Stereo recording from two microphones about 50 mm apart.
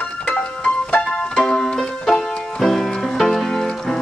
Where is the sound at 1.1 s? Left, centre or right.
Centre.